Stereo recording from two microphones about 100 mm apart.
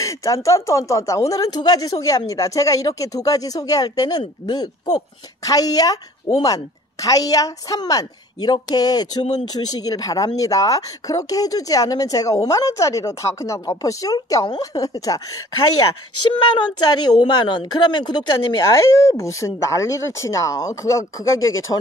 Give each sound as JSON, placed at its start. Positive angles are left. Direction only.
{"t": 0.0, "sound": "speech", "side_deg": 35}
{"t": 16.3, "sound": "speech", "side_deg": 50}
{"t": 18.6, "sound": "speech", "side_deg": 30}